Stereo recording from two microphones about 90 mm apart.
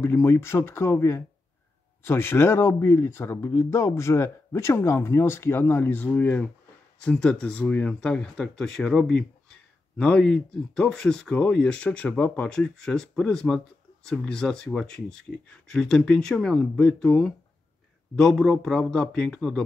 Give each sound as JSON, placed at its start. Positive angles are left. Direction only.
{"t": 0.0, "sound": "speech", "side_deg": 30}